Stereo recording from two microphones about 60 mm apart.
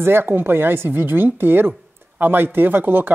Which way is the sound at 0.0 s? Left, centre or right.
Right.